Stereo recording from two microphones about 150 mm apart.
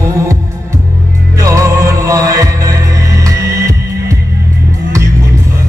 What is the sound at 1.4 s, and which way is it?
Music, 20° right (ahead or behind).